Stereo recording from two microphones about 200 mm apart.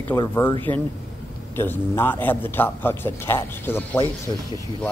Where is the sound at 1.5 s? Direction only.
10° left (ahead or behind).